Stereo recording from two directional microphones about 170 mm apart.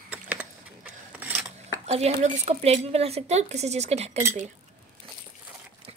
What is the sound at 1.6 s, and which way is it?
Speech, 40° right (ahead or behind).